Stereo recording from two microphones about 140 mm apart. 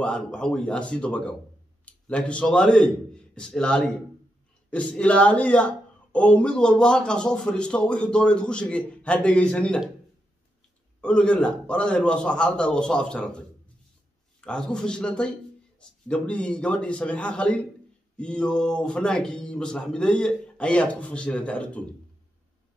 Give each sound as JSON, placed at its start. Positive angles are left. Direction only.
{"t": 0.0, "sound": "speech", "side_deg": 5}
{"t": 11.0, "sound": "speech", "side_deg": 5}
{"t": 14.4, "sound": "a man's voice", "side_deg": 5}